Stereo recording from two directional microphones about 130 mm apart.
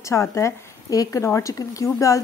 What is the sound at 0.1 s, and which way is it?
A woman's voice, 20° left (ahead or behind).